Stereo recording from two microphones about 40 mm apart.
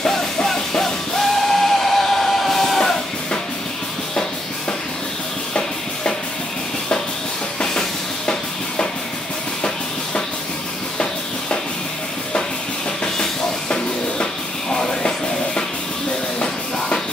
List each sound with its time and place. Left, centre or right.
0.0 s music: centre
5.5 s a sound: left
13.0 s music: left